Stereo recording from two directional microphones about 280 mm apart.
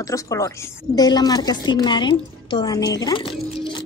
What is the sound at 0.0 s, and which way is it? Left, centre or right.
A woman's voice, centre.